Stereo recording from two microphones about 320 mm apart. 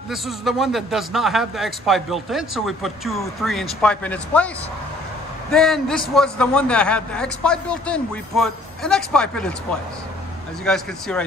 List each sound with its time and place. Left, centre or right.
0.1 s a man's voice: centre
5.5 s a man's voice: centre